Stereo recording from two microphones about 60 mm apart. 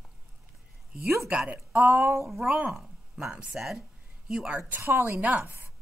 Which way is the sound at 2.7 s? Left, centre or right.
Centre.